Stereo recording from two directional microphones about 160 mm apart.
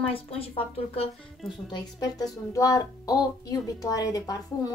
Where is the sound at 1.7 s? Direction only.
25° left (ahead or behind).